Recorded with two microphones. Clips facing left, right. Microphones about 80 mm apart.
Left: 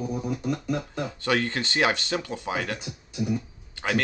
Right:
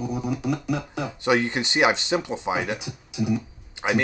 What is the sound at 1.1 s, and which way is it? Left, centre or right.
Speech, centre.